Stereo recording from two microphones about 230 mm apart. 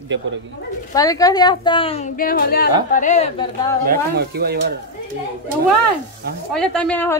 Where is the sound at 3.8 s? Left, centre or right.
Right.